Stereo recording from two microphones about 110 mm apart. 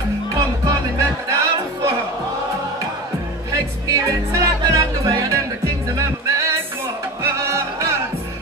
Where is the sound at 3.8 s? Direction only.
30° right (ahead or behind).